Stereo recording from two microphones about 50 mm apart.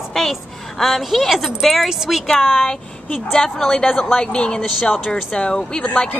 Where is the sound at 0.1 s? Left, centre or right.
Centre.